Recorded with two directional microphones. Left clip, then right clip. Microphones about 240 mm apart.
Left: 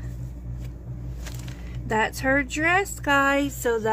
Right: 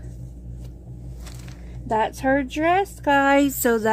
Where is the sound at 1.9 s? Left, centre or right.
Centre.